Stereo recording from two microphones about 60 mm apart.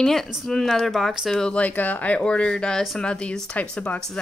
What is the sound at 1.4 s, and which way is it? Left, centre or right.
Speech, centre.